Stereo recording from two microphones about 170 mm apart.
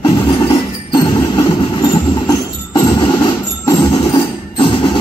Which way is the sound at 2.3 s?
25° left (ahead or behind).